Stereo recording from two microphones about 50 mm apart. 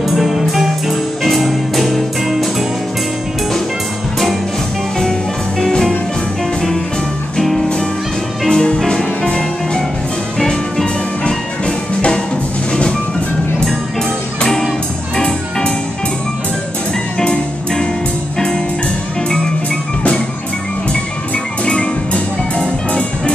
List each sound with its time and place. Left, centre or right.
0.0 s music: centre
5.7 s music: centre
7.3 s music: centre
13.7 s music: centre
17.2 s music: centre
21.6 s music: centre